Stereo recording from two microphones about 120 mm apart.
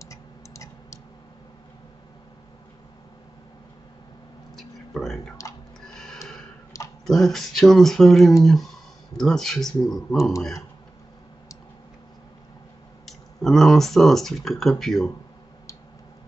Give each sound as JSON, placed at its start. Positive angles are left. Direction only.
{"t": 0.0, "sound": "tick-tock", "side_deg": 25}
{"t": 4.6, "sound": "speech", "side_deg": 0}
{"t": 5.8, "sound": "tick-tock", "side_deg": 5}
{"t": 6.7, "sound": "a sound", "side_deg": 25}
{"t": 7.1, "sound": "speech", "side_deg": 0}
{"t": 13.0, "sound": "speech", "side_deg": 0}